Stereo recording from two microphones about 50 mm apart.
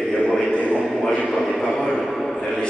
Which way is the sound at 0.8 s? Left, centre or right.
Centre.